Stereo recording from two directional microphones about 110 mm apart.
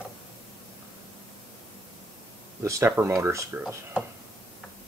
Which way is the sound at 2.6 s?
30° right (ahead or behind).